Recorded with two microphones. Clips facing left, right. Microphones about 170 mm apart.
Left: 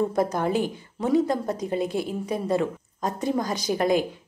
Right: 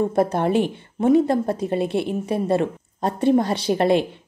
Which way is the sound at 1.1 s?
60° right (ahead or behind).